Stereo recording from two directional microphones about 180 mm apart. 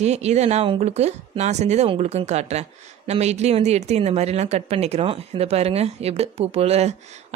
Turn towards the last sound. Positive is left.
turn(degrees=-35)  # may be behind; listen again after turning